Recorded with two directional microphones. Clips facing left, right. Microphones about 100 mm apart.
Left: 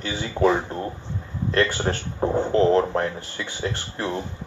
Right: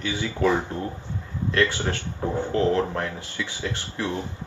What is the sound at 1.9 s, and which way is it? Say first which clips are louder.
Speech: left 4 dB; 40° left (ahead or behind).